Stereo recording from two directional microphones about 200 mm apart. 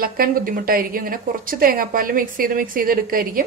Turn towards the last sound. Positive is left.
turn(degrees=-45)  # may be behind; listen again after turning